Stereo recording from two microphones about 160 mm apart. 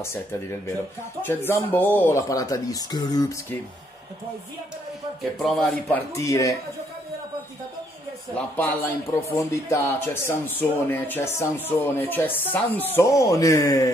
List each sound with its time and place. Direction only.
0.0 s speech: 15° left (ahead or behind)
5.4 s speech: 5° left (ahead or behind)
6.1 s speech: 20° left (ahead or behind)
8.4 s speech: 10° left (ahead or behind)